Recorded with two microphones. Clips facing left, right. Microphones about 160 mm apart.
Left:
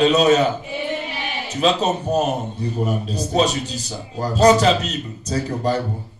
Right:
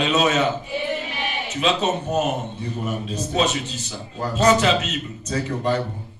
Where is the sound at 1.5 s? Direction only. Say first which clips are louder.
Left 3 dB; 35° left (ahead or behind).